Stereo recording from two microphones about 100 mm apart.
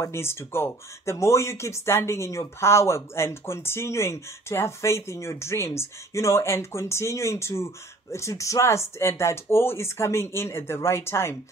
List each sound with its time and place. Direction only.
0.0 s speech: 25° left (ahead or behind)